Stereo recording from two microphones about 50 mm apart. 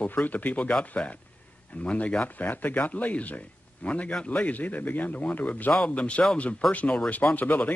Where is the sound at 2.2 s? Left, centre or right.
Left.